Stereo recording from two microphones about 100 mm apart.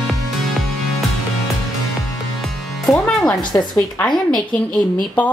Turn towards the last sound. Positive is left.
turn(degrees=10)  # may be behind; listen again after turning